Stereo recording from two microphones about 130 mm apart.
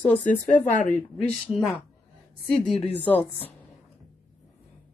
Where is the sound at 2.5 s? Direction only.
5° left (ahead or behind).